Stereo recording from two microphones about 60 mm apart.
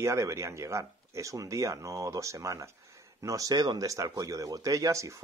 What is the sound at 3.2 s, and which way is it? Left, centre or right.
Speech, right.